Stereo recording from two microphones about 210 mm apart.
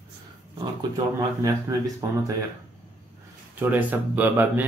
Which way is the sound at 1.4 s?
15° right (ahead or behind).